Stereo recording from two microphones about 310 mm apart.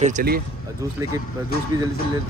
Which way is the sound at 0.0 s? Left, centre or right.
Right.